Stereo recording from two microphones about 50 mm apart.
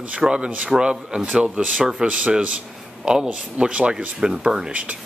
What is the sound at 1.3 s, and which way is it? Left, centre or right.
Speech, right.